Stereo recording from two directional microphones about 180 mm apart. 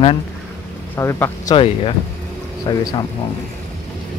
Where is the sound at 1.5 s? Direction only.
30° left (ahead or behind).